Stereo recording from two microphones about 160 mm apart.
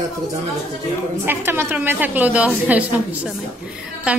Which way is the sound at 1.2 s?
15° right (ahead or behind).